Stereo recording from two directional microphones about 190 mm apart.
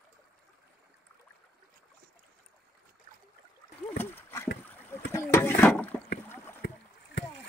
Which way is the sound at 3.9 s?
10° left (ahead or behind).